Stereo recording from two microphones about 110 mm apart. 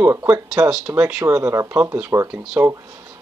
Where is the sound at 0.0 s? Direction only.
20° right (ahead or behind).